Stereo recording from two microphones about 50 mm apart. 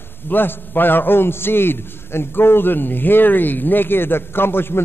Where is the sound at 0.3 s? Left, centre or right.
Left.